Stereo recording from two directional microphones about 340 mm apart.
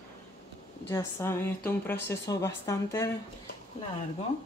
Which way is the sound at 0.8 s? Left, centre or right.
Centre.